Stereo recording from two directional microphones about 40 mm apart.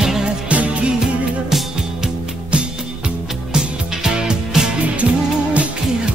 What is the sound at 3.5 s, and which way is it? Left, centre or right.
Music, centre.